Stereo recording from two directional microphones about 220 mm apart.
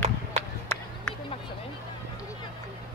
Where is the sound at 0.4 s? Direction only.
10° left (ahead or behind).